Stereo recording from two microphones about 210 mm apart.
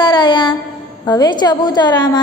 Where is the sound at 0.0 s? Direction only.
20° left (ahead or behind).